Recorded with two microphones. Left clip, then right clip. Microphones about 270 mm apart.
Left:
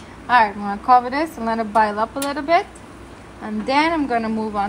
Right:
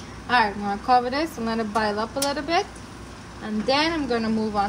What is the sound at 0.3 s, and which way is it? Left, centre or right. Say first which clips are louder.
A woman's voice: left 5 dB; left.